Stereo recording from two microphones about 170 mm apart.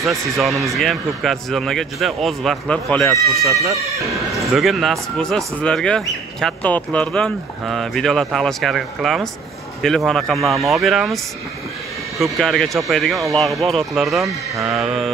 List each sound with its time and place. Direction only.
0.4 s speech: centre (ahead or behind)
3.4 s speech: 20° right (ahead or behind)
4.6 s speech: centre (ahead or behind)
12.2 s speech: centre (ahead or behind)